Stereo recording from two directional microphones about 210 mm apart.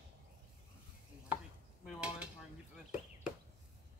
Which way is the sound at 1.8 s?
5° right (ahead or behind).